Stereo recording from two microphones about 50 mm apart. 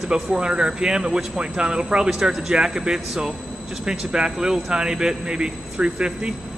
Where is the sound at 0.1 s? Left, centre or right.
Centre.